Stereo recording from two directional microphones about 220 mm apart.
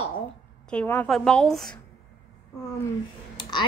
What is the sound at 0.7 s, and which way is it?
Speech, 10° left (ahead or behind).